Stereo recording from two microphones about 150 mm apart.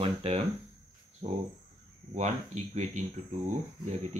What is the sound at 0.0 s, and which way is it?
Cricket, 40° right (ahead or behind).